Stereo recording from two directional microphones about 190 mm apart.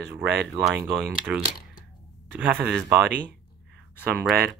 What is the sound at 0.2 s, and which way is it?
Speech, 65° right (ahead or behind).